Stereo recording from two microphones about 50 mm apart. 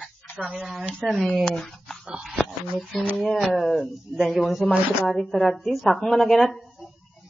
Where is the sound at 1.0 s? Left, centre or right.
Centre.